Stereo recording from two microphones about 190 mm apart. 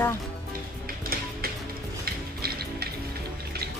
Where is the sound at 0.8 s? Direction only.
50° right (ahead or behind).